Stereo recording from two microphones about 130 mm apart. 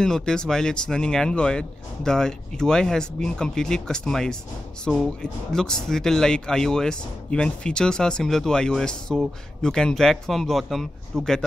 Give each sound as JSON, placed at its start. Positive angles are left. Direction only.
{"t": 0.0, "sound": "speech", "side_deg": 5}